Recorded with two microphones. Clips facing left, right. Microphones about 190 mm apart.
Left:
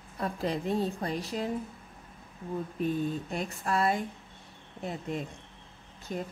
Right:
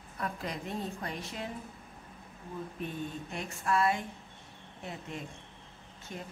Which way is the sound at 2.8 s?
35° left (ahead or behind).